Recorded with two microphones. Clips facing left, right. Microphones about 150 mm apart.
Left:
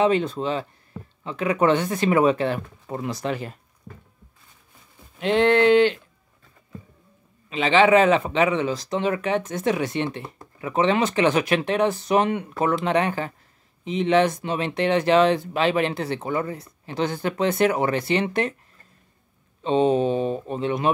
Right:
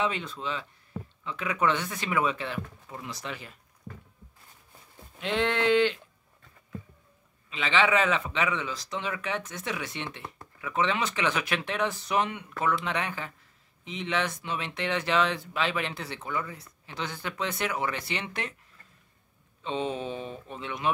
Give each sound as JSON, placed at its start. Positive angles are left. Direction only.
{"t": 0.0, "sound": "speech", "side_deg": 40}
{"t": 7.5, "sound": "speech", "side_deg": 35}
{"t": 15.6, "sound": "speech", "side_deg": 30}
{"t": 15.9, "sound": "speech", "side_deg": 45}
{"t": 19.6, "sound": "speech", "side_deg": 35}